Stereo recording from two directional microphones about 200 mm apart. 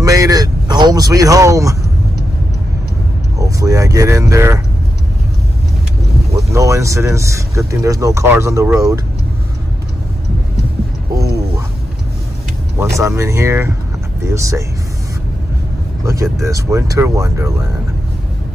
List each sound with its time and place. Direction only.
0.0 s speech: 15° right (ahead or behind)
3.3 s speech: 15° right (ahead or behind)
6.3 s speech: 15° right (ahead or behind)
12.7 s speech: 15° right (ahead or behind)
16.0 s speech: 15° right (ahead or behind)